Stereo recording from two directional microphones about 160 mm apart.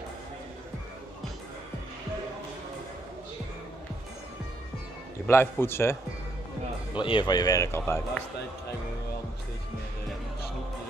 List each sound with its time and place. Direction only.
5.2 s a man's voice: 15° left (ahead or behind)
7.0 s speech: 30° left (ahead or behind); by 8.2 s 15° left (ahead or behind)